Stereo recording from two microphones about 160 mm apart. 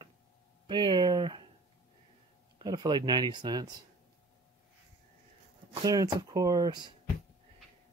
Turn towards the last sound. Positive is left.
turn(degrees=-25)  # may be behind; listen again after turning